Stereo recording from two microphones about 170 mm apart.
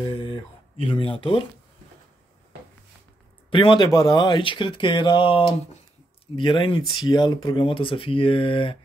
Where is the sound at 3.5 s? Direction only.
30° left (ahead or behind).